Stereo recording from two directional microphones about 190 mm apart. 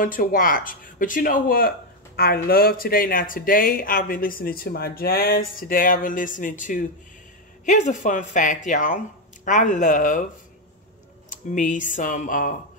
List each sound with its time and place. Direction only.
0.0 s speech: 45° left (ahead or behind)
11.2 s speech: 40° left (ahead or behind)